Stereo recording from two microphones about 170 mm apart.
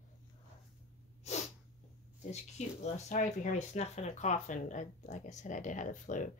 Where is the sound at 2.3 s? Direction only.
40° left (ahead or behind).